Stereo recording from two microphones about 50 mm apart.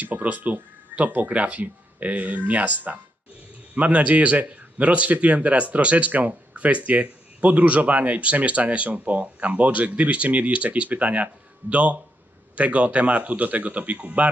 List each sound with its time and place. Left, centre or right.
0.0 s a man's voice: right